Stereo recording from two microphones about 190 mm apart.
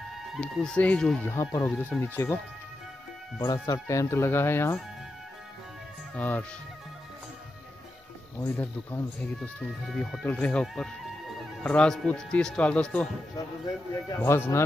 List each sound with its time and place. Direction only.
0.3 s speech: 5° left (ahead or behind)
1.2 s speech: 15° left (ahead or behind)
3.6 s speech: 15° left (ahead or behind)
6.1 s speech: 10° left (ahead or behind)
8.4 s speech: 10° left (ahead or behind)
9.4 s speech: centre (ahead or behind)
13.9 s speech: 15° left (ahead or behind)